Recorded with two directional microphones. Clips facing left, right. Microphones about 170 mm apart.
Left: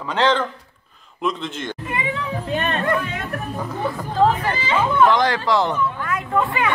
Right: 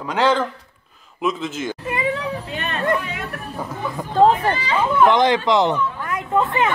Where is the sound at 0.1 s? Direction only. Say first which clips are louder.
Right 1 dB; 10° right (ahead or behind).